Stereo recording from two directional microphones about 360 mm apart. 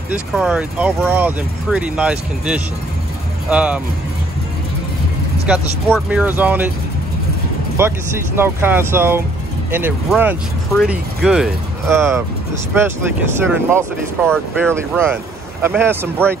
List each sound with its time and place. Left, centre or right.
0.1 s speech: centre
5.5 s speech: centre
7.8 s speech: centre